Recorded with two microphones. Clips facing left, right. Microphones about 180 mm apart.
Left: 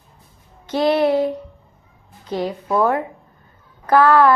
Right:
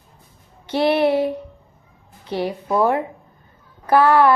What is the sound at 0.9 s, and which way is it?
Speech, 25° right (ahead or behind).